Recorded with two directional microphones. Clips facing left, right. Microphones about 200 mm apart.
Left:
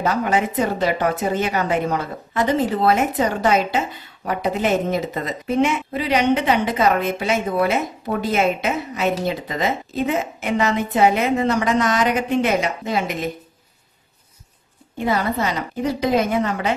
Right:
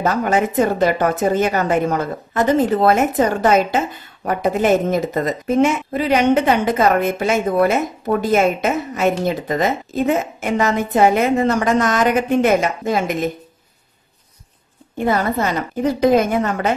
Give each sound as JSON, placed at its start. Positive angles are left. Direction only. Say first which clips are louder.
{"t": 0.0, "sound": "a woman's voice", "louder": "right 2 dB", "side_deg": -45}
{"t": 15.0, "sound": "a woman's voice", "louder": "right 3 dB", "side_deg": -50}